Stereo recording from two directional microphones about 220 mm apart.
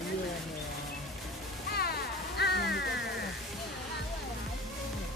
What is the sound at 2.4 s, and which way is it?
Music, 50° left (ahead or behind).